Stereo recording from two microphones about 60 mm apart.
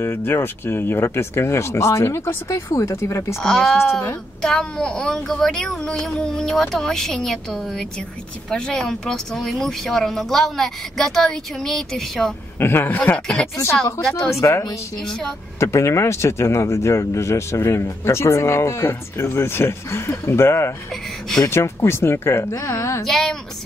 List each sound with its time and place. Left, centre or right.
0.0 s speech: left
2.7 s speech: left
3.4 s speech: centre
12.5 s speech: left
14.4 s speech: left
15.0 s speech: centre
15.6 s speech: left
22.6 s a woman's voice: left
23.0 s speech: centre